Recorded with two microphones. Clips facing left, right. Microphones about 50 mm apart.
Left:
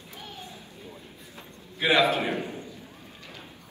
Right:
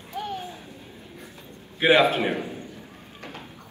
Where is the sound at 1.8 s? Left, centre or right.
Right.